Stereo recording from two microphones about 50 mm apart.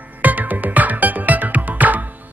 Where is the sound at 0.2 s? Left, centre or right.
Right.